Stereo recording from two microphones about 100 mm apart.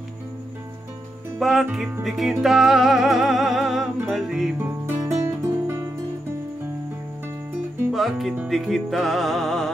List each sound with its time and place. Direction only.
1.4 s music: centre (ahead or behind)
4.6 s music: 25° right (ahead or behind)
7.9 s music: centre (ahead or behind)